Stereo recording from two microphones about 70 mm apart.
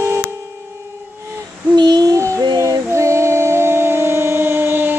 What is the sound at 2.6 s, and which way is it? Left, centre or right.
A capella, right.